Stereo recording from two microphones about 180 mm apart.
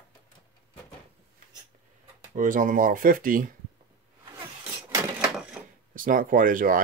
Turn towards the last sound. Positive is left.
turn(degrees=-50)  # may be behind; listen again after turning